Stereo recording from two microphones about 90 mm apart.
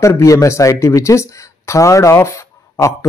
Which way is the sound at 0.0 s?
35° left (ahead or behind).